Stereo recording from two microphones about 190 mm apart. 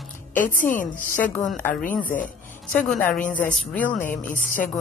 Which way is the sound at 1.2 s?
5° left (ahead or behind).